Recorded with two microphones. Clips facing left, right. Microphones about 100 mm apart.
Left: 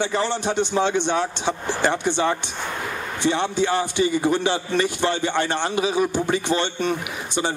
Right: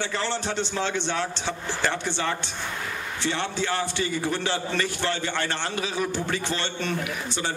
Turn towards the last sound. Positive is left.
turn(degrees=15)  # may be behind; listen again after turning